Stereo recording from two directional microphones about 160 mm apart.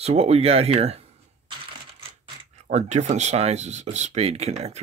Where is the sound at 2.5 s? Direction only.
45° right (ahead or behind).